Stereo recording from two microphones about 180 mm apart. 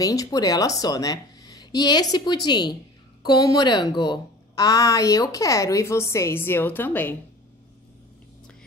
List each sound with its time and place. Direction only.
0.0 s a woman's voice: 20° left (ahead or behind)